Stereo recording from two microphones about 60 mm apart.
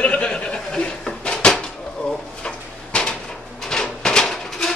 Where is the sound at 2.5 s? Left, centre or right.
Centre.